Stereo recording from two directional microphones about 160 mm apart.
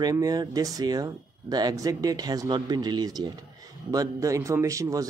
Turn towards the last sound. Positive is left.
turn(degrees=-20)  # may be behind; listen again after turning